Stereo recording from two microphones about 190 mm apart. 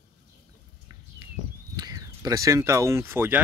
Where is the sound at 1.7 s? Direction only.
20° right (ahead or behind).